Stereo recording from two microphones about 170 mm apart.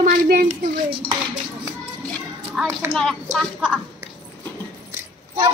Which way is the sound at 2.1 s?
Centre (ahead or behind).